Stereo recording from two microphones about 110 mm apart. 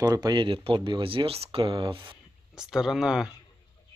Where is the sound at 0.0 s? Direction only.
40° right (ahead or behind); by 1.7 s 60° right (ahead or behind).